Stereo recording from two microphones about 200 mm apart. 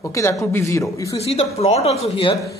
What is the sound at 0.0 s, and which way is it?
Speech, 15° left (ahead or behind).